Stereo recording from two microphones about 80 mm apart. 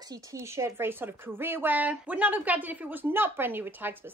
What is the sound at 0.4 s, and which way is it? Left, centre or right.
A woman's voice, right.